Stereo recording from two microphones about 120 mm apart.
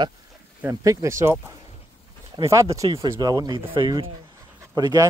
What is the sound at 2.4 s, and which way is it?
Speech, 25° right (ahead or behind).